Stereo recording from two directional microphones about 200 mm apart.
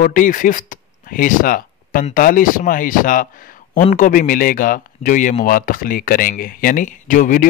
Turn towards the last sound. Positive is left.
turn(degrees=40)  # may be behind; listen again after turning